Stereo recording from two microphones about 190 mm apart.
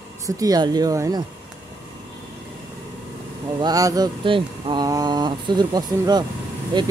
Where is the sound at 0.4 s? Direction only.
20° right (ahead or behind).